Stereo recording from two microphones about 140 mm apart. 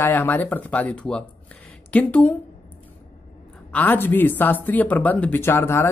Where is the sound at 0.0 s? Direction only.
15° left (ahead or behind).